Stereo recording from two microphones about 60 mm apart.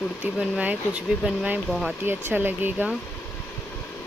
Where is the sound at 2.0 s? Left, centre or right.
Right.